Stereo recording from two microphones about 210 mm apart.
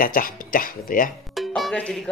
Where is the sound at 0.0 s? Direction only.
40° left (ahead or behind).